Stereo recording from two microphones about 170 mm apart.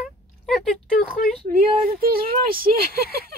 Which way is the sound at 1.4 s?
60° right (ahead or behind).